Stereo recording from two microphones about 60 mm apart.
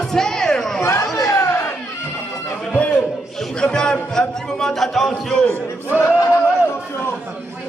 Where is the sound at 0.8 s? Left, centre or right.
Left.